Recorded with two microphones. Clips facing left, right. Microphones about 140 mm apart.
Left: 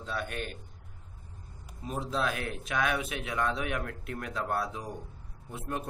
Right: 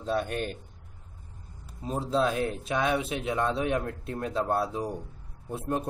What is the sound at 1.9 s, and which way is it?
A man's voice, 30° right (ahead or behind).